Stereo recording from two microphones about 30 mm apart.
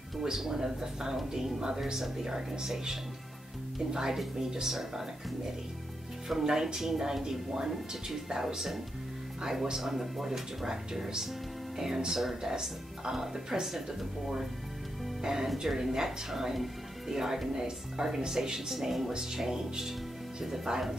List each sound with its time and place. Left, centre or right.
0.2 s speech: centre
6.4 s speech: right
10.6 s speech: centre